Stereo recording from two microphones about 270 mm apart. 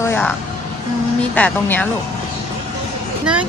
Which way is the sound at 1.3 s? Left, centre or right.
Centre.